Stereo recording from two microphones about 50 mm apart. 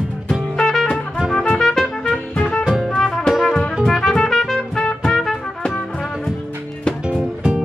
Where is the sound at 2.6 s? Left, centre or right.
Centre.